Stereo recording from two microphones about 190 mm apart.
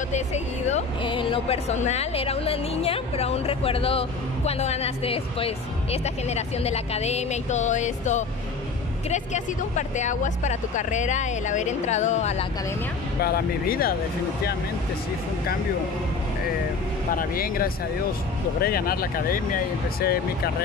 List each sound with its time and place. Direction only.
0.1 s speech: 35° left (ahead or behind)
13.2 s speech: 55° left (ahead or behind)
17.1 s speech: 50° left (ahead or behind)